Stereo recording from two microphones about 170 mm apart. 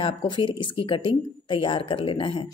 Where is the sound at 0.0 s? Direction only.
30° left (ahead or behind).